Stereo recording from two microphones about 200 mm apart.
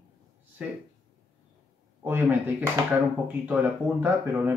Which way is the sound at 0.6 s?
5° right (ahead or behind).